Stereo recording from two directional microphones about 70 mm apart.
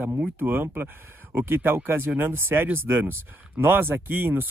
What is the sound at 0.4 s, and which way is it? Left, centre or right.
Speech, right.